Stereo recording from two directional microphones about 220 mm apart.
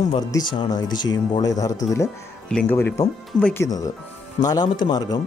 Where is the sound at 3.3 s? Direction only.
5° left (ahead or behind).